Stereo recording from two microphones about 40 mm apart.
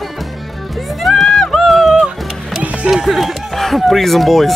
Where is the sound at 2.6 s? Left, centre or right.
Right.